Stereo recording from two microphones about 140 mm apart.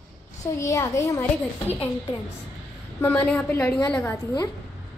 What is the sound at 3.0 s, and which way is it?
Speech, 15° left (ahead or behind).